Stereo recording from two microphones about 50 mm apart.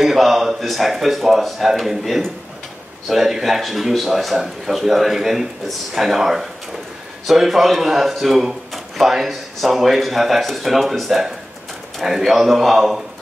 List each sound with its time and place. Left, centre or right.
0.0 s speech: centre